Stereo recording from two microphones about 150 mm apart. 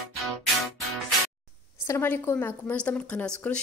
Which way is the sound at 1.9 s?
15° left (ahead or behind).